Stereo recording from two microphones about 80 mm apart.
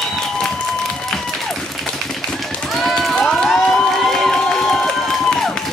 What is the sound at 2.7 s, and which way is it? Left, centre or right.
Run, centre.